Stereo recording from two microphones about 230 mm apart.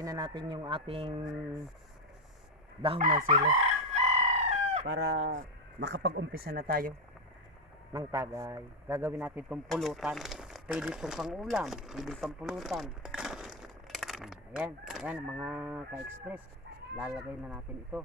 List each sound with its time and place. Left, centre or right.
0.0 s speech: centre
3.0 s chicken: right
4.8 s speech: right
7.9 s a man's voice: centre